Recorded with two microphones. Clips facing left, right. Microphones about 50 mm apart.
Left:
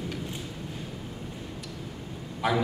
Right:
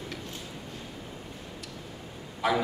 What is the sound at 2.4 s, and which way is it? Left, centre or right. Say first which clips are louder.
Speech: even; centre.